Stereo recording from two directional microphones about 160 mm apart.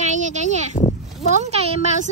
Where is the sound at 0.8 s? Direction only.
40° left (ahead or behind).